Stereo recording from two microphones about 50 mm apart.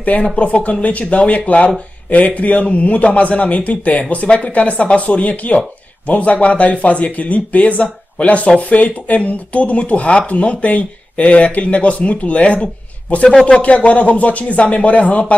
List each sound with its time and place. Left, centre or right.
0.2 s speech: left
13.6 s speech: left